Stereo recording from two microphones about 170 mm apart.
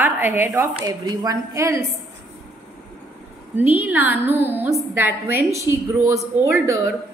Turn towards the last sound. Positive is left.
turn(degrees=-15)  # may be behind; listen again after turning